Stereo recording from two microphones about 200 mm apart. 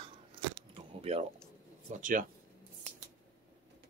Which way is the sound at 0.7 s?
30° right (ahead or behind).